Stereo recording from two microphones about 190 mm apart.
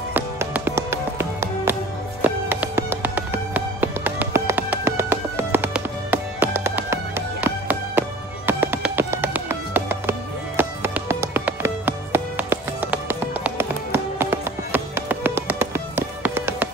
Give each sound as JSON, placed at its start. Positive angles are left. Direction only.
{"t": 0.1, "sound": "music", "side_deg": -10}